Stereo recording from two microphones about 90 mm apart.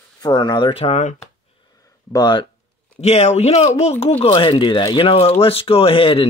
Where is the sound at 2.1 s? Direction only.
55° left (ahead or behind).